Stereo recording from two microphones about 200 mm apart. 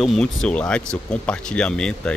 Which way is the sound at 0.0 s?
Centre (ahead or behind).